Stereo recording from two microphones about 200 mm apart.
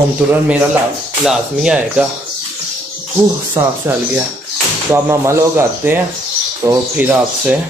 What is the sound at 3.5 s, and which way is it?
A man's voice, 15° right (ahead or behind).